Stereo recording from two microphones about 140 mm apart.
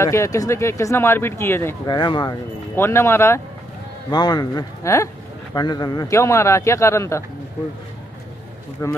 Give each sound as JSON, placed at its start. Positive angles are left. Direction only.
{"t": 0.0, "sound": "speech", "side_deg": 20}
{"t": 1.9, "sound": "speech", "side_deg": 30}
{"t": 2.7, "sound": "speech", "side_deg": 20}
{"t": 4.1, "sound": "speech", "side_deg": 30}
{"t": 8.8, "sound": "speech", "side_deg": 20}